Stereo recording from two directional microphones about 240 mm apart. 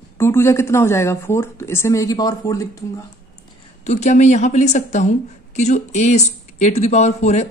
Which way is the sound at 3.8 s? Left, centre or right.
Left.